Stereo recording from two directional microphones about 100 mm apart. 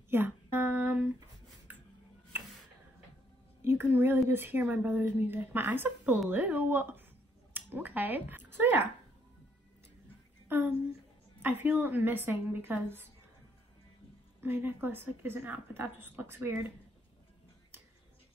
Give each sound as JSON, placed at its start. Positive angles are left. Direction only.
{"t": 0.1, "sound": "guitar", "side_deg": -20}
{"t": 3.6, "sound": "a sound", "side_deg": -25}
{"t": 4.3, "sound": "a woman's voice", "side_deg": -20}
{"t": 7.5, "sound": "a sound", "side_deg": -20}
{"t": 10.5, "sound": "a woman's voice", "side_deg": -20}
{"t": 14.4, "sound": "a woman's voice", "side_deg": -20}